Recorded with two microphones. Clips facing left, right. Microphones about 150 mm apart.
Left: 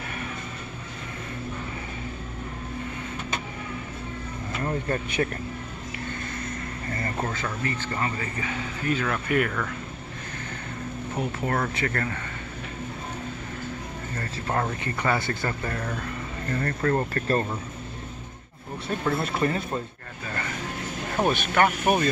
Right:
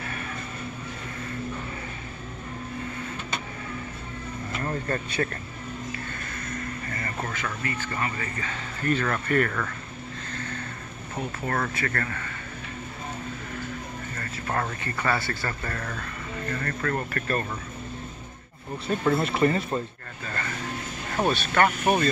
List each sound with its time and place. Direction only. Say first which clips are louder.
4.6 s speech: left 2 dB; 15° left (ahead or behind)
6.9 s speech: left 6 dB; 25° left (ahead or behind)
8.8 s speech: right 1 dB; 5° left (ahead or behind)
11.1 s speech: left 1 dB; 20° left (ahead or behind)
14.1 s speech: left 2 dB; 20° left (ahead or behind)
18.9 s speech: right 3 dB; centre (ahead or behind)
21.2 s speech: even; 15° left (ahead or behind)